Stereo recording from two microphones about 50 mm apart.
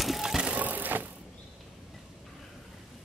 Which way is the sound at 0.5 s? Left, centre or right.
Right.